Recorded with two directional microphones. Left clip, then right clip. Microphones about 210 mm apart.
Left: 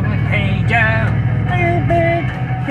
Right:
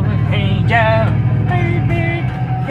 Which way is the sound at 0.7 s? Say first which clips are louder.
Right 2 dB; 15° right (ahead or behind).